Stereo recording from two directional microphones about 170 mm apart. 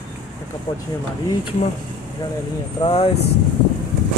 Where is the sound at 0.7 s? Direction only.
25° left (ahead or behind).